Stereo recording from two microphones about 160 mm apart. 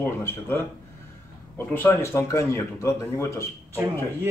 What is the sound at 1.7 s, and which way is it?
Speech, 15° left (ahead or behind).